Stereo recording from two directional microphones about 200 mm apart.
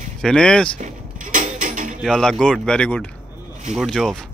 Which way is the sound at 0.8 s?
40° right (ahead or behind).